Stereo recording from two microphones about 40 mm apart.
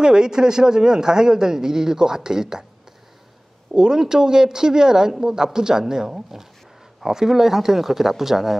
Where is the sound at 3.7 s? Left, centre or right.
Centre.